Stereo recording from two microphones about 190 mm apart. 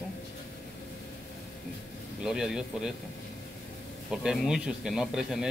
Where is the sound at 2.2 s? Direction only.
Centre (ahead or behind).